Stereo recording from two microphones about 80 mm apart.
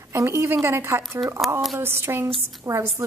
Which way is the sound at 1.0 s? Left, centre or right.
Centre.